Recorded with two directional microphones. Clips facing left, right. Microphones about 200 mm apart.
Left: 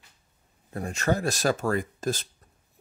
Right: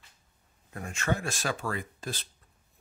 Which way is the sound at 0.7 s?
35° left (ahead or behind).